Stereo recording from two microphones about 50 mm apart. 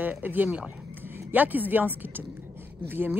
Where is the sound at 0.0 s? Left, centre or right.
Right.